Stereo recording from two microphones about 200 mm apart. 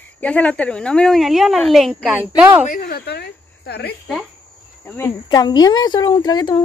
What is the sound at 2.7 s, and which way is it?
Cricket, 45° left (ahead or behind).